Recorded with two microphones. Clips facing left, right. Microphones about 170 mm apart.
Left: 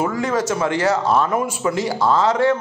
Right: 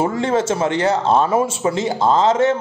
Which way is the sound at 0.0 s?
25° right (ahead or behind).